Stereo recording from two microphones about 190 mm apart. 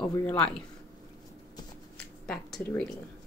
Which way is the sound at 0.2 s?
10° left (ahead or behind).